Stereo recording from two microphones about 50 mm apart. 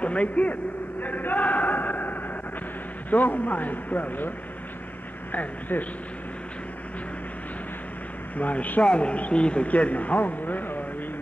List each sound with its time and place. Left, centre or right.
0.0 s speech: left
1.0 s a sound: left
3.1 s a man's voice: left
5.3 s a man's voice: left
8.4 s a man's voice: left